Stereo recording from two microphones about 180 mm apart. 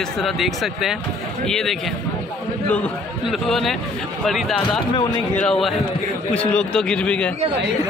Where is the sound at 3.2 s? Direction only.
Centre (ahead or behind).